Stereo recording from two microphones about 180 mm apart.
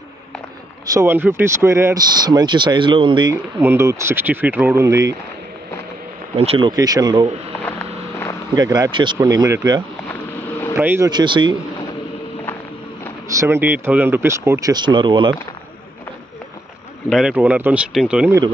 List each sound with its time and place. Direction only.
0.8 s speech: 15° right (ahead or behind)
3.6 s speech: 15° right (ahead or behind)
6.3 s speech: 35° right (ahead or behind)
6.7 s speech: 20° right (ahead or behind)
8.5 s speech: 20° right (ahead or behind)
11.1 s speech: 25° right (ahead or behind)
13.3 s speech: 15° right (ahead or behind)
17.1 s speech: 5° right (ahead or behind)